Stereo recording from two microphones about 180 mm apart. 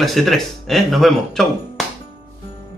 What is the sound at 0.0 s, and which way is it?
Speech, centre (ahead or behind).